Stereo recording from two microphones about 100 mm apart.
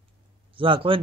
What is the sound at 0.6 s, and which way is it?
Speech, 60° right (ahead or behind).